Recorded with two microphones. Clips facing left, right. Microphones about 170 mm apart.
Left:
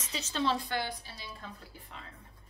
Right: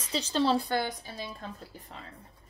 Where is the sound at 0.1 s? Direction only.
35° right (ahead or behind).